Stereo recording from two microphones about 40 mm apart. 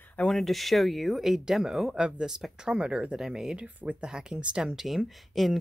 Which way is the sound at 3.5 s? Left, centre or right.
Right.